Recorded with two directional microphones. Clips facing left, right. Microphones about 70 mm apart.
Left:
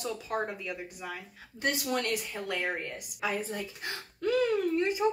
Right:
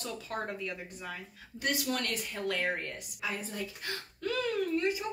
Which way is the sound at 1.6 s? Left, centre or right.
Left.